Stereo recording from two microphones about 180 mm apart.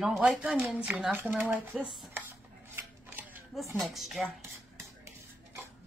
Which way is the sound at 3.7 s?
Centre (ahead or behind).